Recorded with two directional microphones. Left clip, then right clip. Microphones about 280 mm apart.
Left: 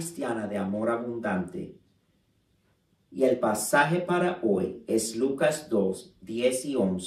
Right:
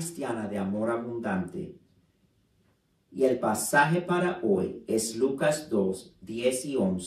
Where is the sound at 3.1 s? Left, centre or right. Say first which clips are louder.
Left 1 dB; centre.